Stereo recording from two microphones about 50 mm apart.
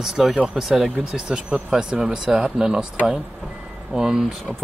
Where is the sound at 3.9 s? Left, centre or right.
Centre.